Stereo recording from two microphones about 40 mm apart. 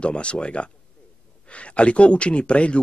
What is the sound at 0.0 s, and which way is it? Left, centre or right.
Speech, left.